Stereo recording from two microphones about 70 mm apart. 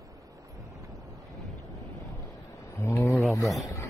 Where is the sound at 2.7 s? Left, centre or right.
Left.